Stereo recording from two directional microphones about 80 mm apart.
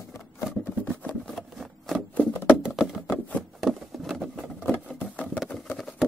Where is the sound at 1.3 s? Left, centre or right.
Centre.